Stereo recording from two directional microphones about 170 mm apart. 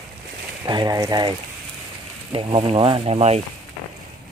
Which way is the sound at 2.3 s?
30° right (ahead or behind).